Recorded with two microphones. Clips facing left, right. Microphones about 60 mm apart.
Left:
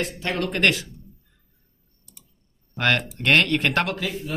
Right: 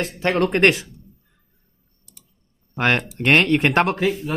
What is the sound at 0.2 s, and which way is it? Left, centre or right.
Speech, right.